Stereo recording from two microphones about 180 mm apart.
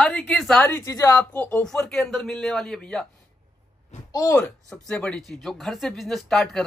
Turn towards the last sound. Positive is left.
turn(degrees=0)  # may be behind; listen again after turning